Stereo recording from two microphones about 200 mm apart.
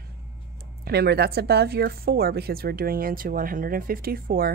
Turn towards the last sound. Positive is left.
turn(degrees=-45)  # may be behind; listen again after turning